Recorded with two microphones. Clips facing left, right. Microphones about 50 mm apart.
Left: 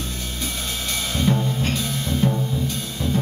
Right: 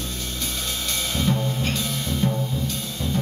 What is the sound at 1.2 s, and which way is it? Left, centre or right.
Music, centre.